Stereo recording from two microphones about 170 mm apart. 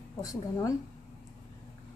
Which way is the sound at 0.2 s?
20° left (ahead or behind).